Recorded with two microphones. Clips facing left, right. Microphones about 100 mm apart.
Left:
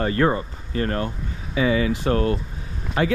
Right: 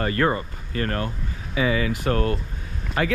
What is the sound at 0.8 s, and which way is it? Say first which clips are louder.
Speech: left 1 dB; 25° left (ahead or behind).